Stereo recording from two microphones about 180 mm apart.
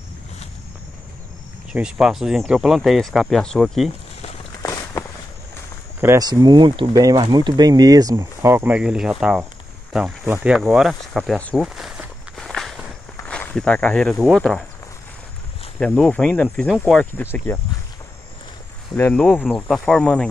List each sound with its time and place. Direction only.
1.7 s speech: 5° right (ahead or behind)
4.6 s walk: 20° left (ahead or behind)
5.9 s speech: 15° right (ahead or behind)
10.5 s walk: centre (ahead or behind)
15.8 s speech: 5° left (ahead or behind)
17.0 s speech: 10° left (ahead or behind)
18.9 s speech: 10° left (ahead or behind)